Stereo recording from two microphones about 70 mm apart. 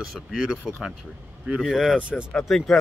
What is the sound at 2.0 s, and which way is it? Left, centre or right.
Speech, centre.